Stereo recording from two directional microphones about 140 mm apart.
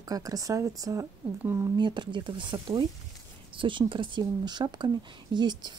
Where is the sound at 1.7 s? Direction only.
35° right (ahead or behind).